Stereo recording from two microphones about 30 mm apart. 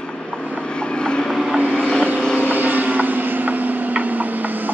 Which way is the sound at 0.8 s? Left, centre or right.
Left.